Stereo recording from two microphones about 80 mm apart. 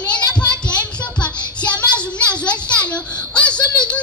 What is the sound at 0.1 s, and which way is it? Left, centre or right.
Child singing, centre.